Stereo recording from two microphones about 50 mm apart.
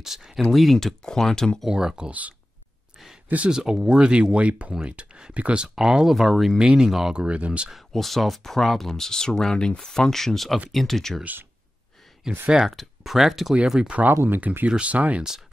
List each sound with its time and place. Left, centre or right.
0.0 s speech: centre
0.5 s speech: centre
1.7 s speech: centre
2.0 s speech: right
3.4 s speech: centre
5.6 s speech: centre
7.2 s speech: right
7.9 s speech: centre
12.2 s speech: centre
14.2 s speech: right
14.7 s speech: right